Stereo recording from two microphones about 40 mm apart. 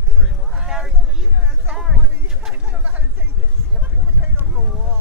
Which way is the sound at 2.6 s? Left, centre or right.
Right.